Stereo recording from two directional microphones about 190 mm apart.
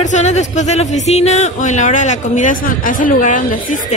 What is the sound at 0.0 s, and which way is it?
A woman's voice, 40° left (ahead or behind).